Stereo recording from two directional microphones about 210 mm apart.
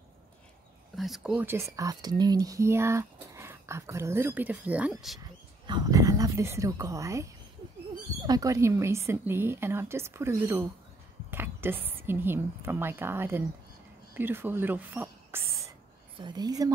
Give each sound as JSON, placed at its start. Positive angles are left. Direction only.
{"t": 0.9, "sound": "speech", "side_deg": 0}
{"t": 5.7, "sound": "speech", "side_deg": -20}
{"t": 8.3, "sound": "speech", "side_deg": -15}
{"t": 11.2, "sound": "a sound", "side_deg": -10}
{"t": 12.0, "sound": "speech", "side_deg": -10}